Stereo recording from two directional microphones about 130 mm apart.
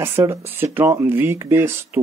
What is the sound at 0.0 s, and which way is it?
Speech, 20° right (ahead or behind).